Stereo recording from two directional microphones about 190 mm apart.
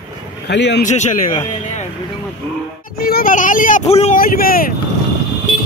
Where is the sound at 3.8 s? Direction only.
30° left (ahead or behind).